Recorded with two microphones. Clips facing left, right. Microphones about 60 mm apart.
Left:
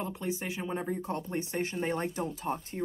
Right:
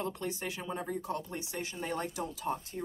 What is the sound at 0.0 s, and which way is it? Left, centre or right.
A woman's voice, left.